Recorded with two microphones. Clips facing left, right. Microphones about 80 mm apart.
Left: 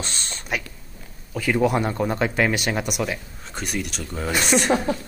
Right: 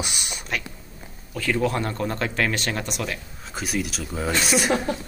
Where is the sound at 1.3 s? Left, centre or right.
Centre.